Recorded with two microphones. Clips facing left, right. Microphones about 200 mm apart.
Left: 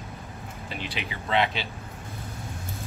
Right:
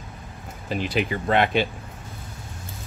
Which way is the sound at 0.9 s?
50° right (ahead or behind).